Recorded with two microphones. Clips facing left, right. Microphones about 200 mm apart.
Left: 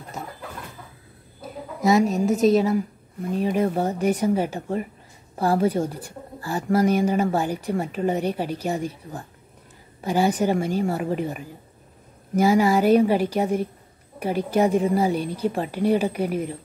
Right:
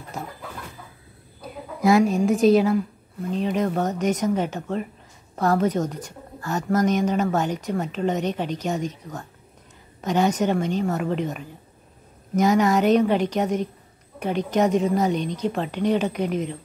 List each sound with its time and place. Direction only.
1.4 s a woman's voice: centre (ahead or behind)